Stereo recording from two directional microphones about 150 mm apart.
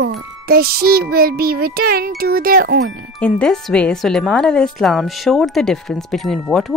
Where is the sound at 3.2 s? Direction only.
5° left (ahead or behind).